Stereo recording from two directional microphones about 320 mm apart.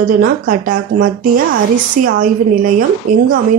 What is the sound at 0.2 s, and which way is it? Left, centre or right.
A woman's voice, right.